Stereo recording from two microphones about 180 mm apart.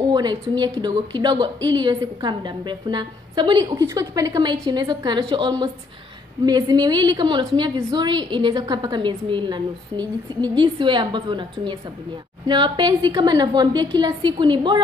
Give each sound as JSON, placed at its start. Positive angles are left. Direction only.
{"t": 0.0, "sound": "a woman's voice", "side_deg": -25}
{"t": 12.4, "sound": "a woman's voice", "side_deg": -25}